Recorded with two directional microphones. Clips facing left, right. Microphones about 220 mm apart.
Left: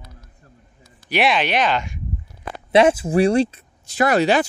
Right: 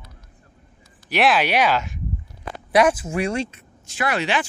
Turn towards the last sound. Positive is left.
turn(degrees=40)  # may be behind; listen again after turning